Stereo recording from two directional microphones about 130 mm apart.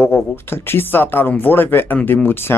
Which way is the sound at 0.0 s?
15° left (ahead or behind).